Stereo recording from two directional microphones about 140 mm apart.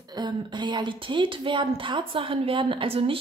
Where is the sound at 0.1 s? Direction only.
30° right (ahead or behind).